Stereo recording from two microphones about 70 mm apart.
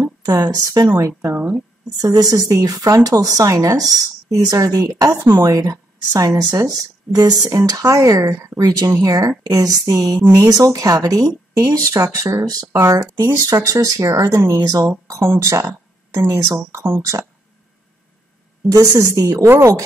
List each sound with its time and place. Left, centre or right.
0.2 s speech: right
0.9 s speech: right
1.3 s speech: right
2.0 s speech: right
7.6 s speech: right
18.7 s speech: right
19.4 s speech: right